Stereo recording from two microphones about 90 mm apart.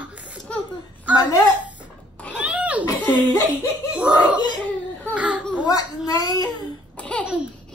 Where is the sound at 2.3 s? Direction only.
15° right (ahead or behind).